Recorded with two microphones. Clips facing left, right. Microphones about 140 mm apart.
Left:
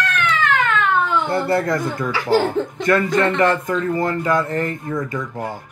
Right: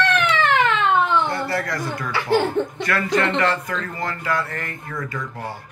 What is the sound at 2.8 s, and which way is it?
Speech, 25° left (ahead or behind).